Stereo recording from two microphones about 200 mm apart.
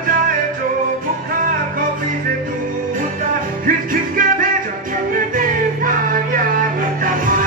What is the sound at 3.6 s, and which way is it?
Music, 45° right (ahead or behind).